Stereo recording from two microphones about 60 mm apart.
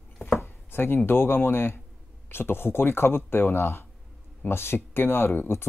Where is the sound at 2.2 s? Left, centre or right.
Left.